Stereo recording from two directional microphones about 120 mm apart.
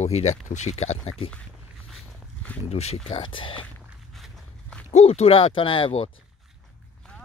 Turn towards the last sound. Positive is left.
turn(degrees=55)  # may be behind; listen again after turning